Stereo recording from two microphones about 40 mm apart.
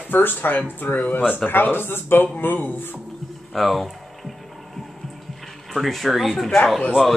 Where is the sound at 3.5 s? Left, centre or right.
Centre.